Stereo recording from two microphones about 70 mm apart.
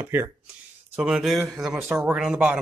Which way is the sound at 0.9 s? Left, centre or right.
Centre.